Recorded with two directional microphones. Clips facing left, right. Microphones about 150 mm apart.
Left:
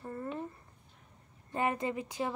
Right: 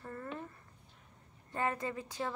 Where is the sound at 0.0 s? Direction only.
20° left (ahead or behind).